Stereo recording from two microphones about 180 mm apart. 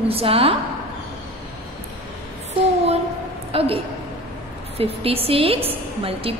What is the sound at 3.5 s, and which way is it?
Speech, 30° right (ahead or behind).